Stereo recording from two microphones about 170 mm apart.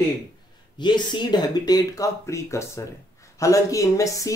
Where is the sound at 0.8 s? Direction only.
25° left (ahead or behind).